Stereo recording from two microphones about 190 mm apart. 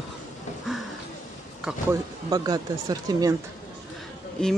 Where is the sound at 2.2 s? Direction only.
20° right (ahead or behind).